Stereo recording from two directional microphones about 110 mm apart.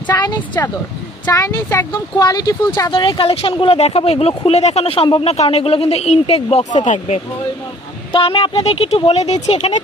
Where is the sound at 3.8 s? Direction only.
65° left (ahead or behind); by 6.8 s 80° left.